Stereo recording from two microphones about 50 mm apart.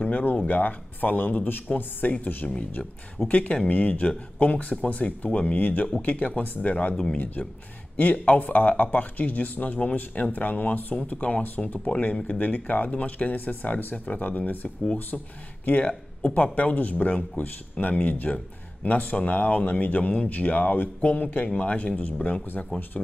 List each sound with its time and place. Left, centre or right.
0.0 s speech: left
2.4 s speech: centre
3.3 s speech: left
8.0 s speech: left